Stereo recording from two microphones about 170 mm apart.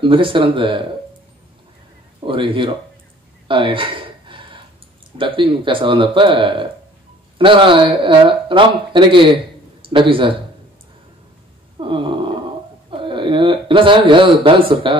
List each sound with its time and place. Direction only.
0.0 s speech: 30° right (ahead or behind)
2.2 s speech: 30° right (ahead or behind)
3.4 s a sound: 30° right (ahead or behind)
5.1 s speech: 30° right (ahead or behind)
11.8 s wail: 30° right (ahead or behind)
12.9 s speech: 30° right (ahead or behind)